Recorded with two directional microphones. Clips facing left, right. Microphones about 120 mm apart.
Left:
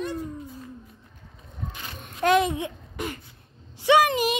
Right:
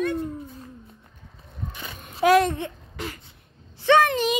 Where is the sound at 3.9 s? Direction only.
10° left (ahead or behind).